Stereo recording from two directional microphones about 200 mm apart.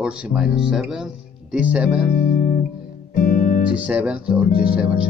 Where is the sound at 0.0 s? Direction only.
5° right (ahead or behind).